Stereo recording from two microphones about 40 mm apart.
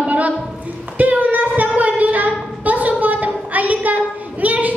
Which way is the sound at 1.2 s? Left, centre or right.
Right.